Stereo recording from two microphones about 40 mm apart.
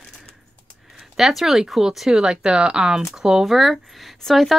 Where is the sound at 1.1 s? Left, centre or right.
Centre.